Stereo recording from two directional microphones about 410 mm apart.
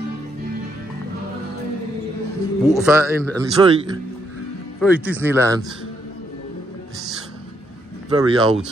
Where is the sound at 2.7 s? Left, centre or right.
Centre.